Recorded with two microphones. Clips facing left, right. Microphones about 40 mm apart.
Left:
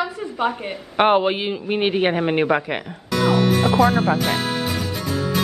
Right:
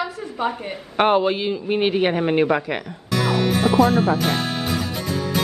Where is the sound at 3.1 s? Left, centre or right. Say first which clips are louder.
Left 2 dB; centre.